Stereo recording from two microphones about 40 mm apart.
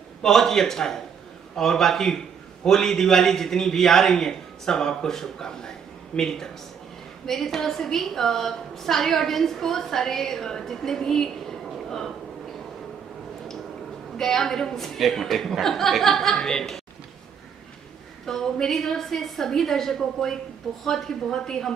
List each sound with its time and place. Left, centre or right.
0.2 s a woman's voice: centre
14.1 s a woman's voice: centre
16.3 s a woman's voice: centre
18.2 s a woman's voice: centre